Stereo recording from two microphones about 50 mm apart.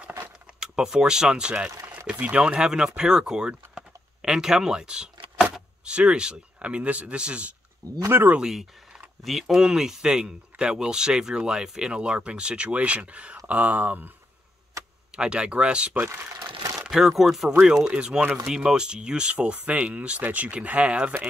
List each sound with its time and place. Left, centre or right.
0.6 s speech: centre
8.4 s speech: centre; by 14.1 s right
14.8 s tick-tock: right
15.1 s speech: centre
16.9 s speech: centre; by 21.1 s right